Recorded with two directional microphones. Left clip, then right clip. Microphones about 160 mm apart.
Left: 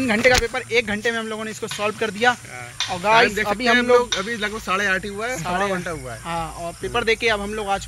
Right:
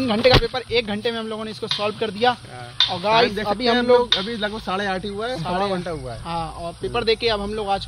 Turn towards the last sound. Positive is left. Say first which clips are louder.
# even
turn(degrees=15)  # may be behind; listen again after turning